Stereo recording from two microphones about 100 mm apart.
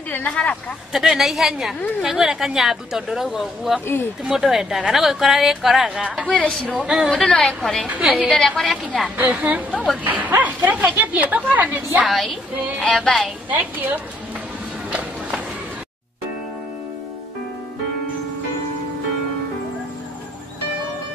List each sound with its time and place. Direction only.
0.1 s a woman's voice: 15° left (ahead or behind)
0.9 s a woman's voice: centre (ahead or behind)
3.8 s speech: 20° left (ahead or behind)
4.2 s a woman's voice: 5° right (ahead or behind)
6.2 s a woman's voice: 15° left (ahead or behind)
6.8 s a woman's voice: 10° right (ahead or behind)
7.1 s a woman's voice: 10° left (ahead or behind)
7.8 s a woman's voice: 10° right (ahead or behind)
8.3 s a woman's voice: 5° left (ahead or behind)
9.1 s a woman's voice: 15° right (ahead or behind)
12.9 s a woman's voice: 5° left (ahead or behind)
14.9 s run: 10° right (ahead or behind)